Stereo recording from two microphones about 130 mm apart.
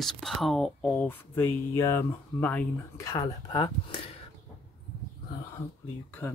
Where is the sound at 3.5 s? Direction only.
40° left (ahead or behind).